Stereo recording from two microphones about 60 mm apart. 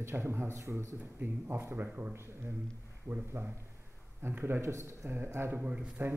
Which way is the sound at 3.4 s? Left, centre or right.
Right.